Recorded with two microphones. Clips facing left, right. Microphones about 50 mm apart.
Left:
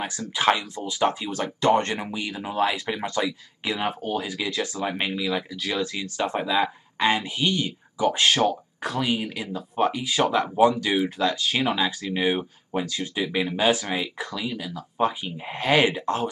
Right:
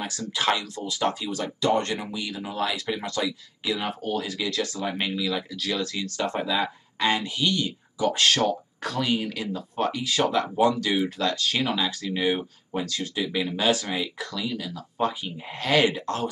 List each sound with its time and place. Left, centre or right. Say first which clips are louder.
0.0 s speech: left 4 dB; left
1.3 s speech: left 3 dB; left; by 16.3 s centre